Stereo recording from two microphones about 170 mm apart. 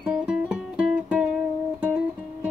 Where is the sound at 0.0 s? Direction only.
5° right (ahead or behind).